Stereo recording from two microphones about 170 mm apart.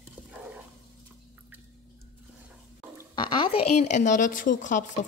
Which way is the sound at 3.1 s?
30° left (ahead or behind).